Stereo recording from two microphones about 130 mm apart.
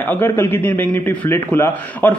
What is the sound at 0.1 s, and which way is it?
A man's voice, 15° left (ahead or behind).